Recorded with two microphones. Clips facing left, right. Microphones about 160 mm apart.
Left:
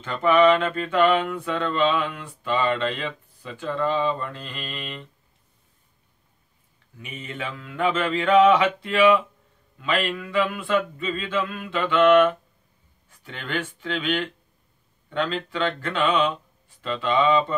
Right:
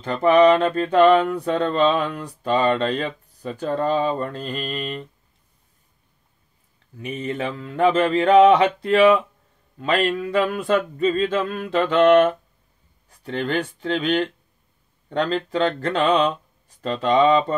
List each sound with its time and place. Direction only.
0.0 s mantra: 40° right (ahead or behind)
7.0 s mantra: 40° right (ahead or behind)